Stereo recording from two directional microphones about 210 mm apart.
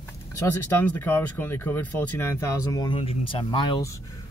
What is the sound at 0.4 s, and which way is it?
Speech, 10° left (ahead or behind).